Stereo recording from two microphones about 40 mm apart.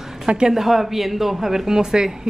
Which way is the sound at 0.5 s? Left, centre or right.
Centre.